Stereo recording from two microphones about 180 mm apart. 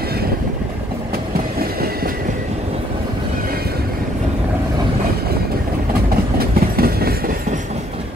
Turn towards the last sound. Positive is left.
turn(degrees=-55)  # may be behind; listen again after turning